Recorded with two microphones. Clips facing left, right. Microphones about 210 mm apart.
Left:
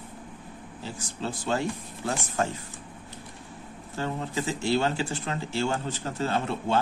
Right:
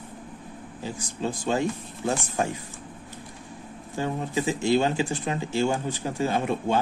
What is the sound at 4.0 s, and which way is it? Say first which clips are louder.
Speech: right 3 dB; 15° right (ahead or behind).